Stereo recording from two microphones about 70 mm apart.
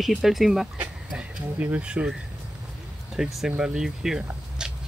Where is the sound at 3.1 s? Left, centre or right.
Centre.